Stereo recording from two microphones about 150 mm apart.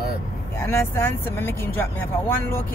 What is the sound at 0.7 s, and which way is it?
Speech, 15° left (ahead or behind).